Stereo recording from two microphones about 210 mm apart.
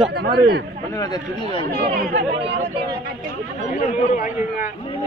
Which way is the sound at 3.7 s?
40° left (ahead or behind).